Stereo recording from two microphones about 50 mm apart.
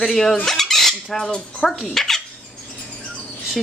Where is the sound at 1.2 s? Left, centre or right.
Centre.